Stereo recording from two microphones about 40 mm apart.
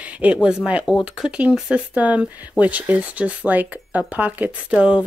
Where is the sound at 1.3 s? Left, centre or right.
Right.